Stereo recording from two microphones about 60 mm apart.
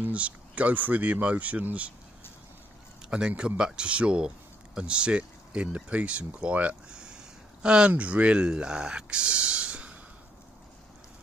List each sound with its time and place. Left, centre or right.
0.0 s speech: right
3.0 s speech: centre